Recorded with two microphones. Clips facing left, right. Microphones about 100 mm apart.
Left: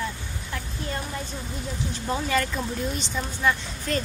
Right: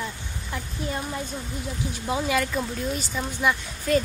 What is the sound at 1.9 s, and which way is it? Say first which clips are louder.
Speech: right 1 dB; 10° right (ahead or behind).